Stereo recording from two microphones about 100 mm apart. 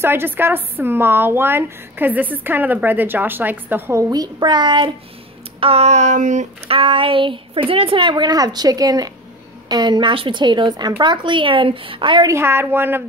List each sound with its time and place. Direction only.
0.0 s a woman's voice: 20° right (ahead or behind)
4.1 s a woman's voice: 45° right (ahead or behind)
5.6 s a sound: 80° right
6.7 s a woman's voice: 65° right (ahead or behind)
12.4 s a woman's voice: 25° right (ahead or behind)